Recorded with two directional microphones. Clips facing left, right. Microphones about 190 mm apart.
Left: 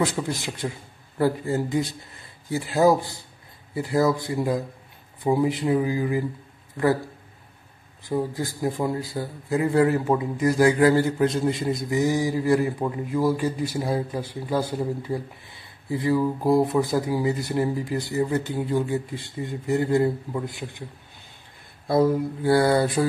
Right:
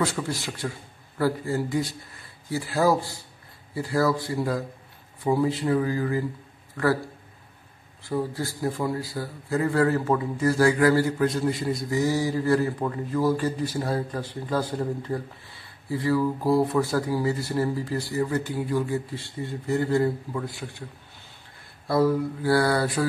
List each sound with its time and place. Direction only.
0.0 s a man's voice: 20° left (ahead or behind)
8.1 s a man's voice: 15° left (ahead or behind)
21.8 s a man's voice: 20° left (ahead or behind)